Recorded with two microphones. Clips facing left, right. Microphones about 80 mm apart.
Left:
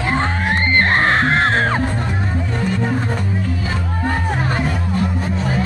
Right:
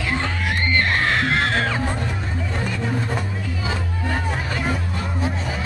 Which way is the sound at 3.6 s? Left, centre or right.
Left.